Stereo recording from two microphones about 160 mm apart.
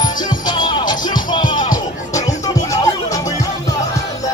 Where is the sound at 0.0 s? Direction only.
25° left (ahead or behind).